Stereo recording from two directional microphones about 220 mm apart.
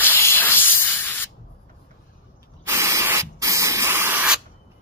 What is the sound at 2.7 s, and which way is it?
Spray, 15° right (ahead or behind).